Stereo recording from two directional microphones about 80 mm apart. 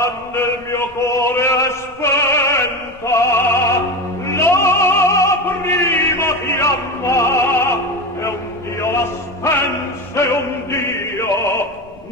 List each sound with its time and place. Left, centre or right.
0.0 s chant: left
3.1 s opera: left
8.8 s music: left